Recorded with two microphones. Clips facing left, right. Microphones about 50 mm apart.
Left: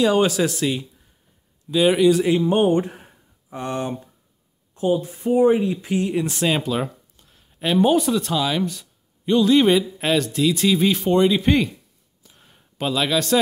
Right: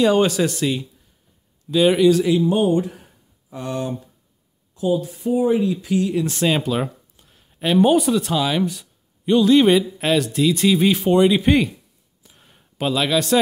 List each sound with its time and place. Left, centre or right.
0.0 s speech: centre
2.2 s speech: left
4.7 s speech: left
5.0 s speech: left
5.5 s speech: left
6.2 s speech: centre
12.4 s a sound: centre